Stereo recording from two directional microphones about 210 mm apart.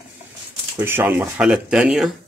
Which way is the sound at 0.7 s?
10° right (ahead or behind).